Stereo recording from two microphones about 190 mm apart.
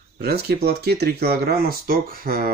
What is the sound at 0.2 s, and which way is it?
Speech, 55° right (ahead or behind).